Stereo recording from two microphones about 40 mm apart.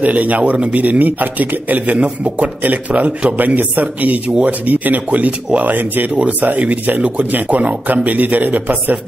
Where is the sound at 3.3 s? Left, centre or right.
Right.